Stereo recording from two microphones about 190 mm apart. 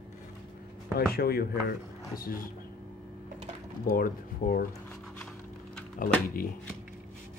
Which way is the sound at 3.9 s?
50° left (ahead or behind).